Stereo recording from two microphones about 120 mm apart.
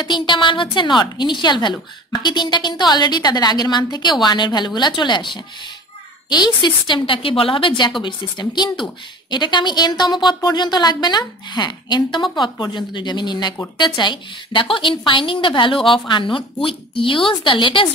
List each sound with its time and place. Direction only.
0.0 s a woman's voice: 40° left (ahead or behind)